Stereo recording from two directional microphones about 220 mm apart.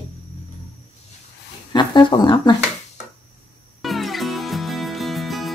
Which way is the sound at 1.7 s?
20° left (ahead or behind).